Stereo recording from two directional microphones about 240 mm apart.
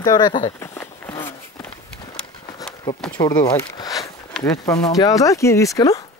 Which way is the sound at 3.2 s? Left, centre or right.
Centre.